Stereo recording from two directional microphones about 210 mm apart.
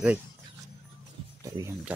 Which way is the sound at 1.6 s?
15° right (ahead or behind).